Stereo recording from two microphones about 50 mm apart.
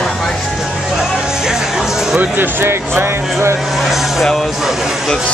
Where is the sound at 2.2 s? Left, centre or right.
Right.